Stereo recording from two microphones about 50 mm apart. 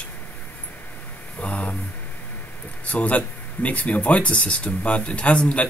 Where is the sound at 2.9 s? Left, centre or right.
Left.